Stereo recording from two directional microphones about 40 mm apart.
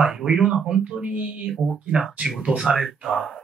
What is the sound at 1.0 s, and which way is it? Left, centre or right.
Speech, right.